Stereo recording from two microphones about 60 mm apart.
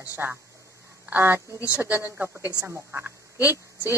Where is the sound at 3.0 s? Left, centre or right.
Right.